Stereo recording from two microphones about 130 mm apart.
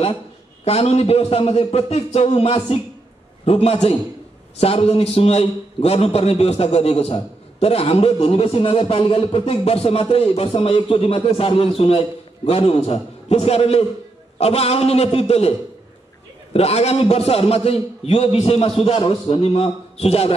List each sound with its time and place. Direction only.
0.7 s a man's voice: 50° left (ahead or behind)
16.5 s a man's voice: 50° left (ahead or behind)